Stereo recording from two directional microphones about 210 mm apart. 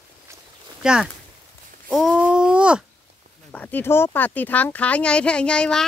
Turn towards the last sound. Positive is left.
turn(degrees=5)  # may be behind; listen again after turning